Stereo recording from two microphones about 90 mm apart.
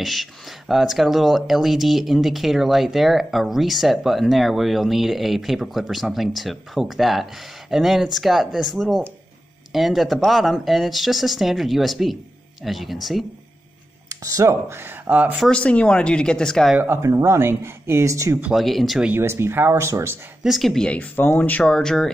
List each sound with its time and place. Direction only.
0.0 s speech: centre (ahead or behind)
14.0 s speech: 40° right (ahead or behind); by 15.3 s 20° right (ahead or behind)
15.4 s speech: 10° left (ahead or behind)
16.7 s speech: 20° right (ahead or behind)
17.0 s speech: 35° right (ahead or behind)
18.5 s speech: centre (ahead or behind)
19.1 s speech: 30° right (ahead or behind)
20.4 s speech: centre (ahead or behind)